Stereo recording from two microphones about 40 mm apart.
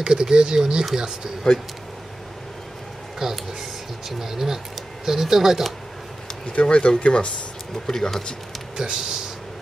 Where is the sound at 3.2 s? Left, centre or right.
Centre.